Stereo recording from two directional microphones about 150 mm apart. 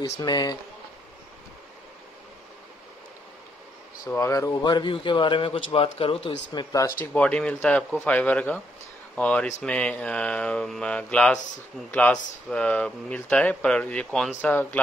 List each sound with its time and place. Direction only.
0.0 s speech: 25° left (ahead or behind)
4.1 s a man's voice: 20° left (ahead or behind)
7.2 s speech: 10° left (ahead or behind)